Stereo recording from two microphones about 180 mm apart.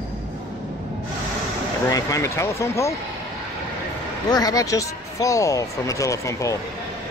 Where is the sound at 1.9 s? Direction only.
20° left (ahead or behind).